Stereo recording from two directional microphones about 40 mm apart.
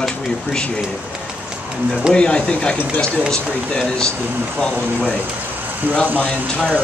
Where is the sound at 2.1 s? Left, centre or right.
Left.